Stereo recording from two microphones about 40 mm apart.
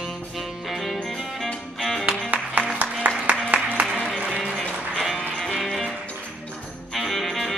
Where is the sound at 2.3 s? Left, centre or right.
Right.